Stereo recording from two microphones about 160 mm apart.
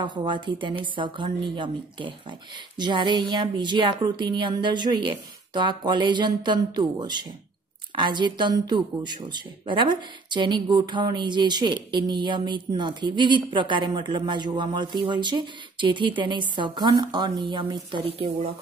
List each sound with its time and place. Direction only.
0.0 s a woman's voice: 30° right (ahead or behind)